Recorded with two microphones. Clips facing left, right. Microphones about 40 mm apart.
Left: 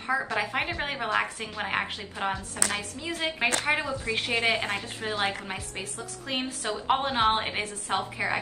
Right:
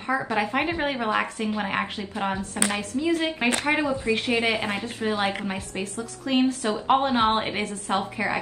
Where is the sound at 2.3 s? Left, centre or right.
Right.